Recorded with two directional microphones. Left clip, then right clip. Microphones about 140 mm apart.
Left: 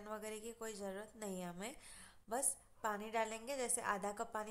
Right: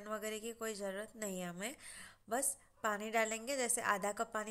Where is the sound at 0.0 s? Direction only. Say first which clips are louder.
Right 5 dB; 15° right (ahead or behind).